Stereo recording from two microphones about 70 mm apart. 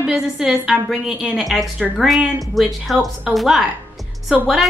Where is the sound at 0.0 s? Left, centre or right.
Centre.